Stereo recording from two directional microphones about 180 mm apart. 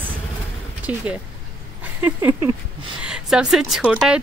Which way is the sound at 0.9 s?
10° right (ahead or behind).